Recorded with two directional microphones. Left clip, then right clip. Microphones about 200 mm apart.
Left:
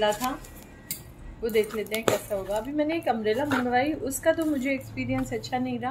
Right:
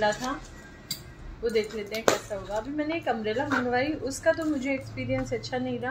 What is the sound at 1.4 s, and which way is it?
A woman's voice, 50° left (ahead or behind).